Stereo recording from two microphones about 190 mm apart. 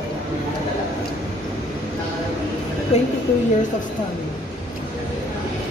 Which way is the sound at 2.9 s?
30° left (ahead or behind).